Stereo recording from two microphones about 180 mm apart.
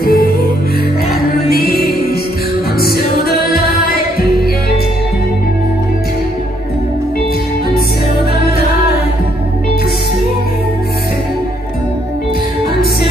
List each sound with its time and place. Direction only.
0.0 s music: 55° left (ahead or behind)
1.6 s music: 55° left (ahead or behind)